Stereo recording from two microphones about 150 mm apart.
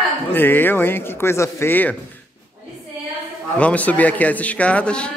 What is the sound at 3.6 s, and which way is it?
Speech, 10° left (ahead or behind).